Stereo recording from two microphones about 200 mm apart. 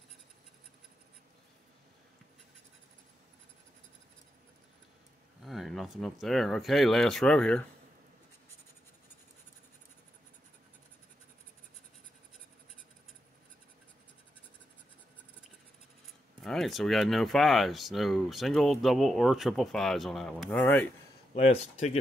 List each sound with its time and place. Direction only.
5.4 s speech: centre (ahead or behind)
16.3 s speech: centre (ahead or behind)
21.4 s speech: 35° left (ahead or behind)